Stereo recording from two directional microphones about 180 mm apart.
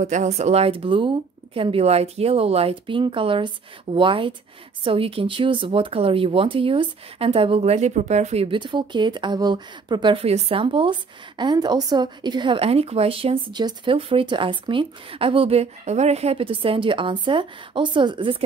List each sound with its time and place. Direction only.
0.0 s speech: 40° right (ahead or behind)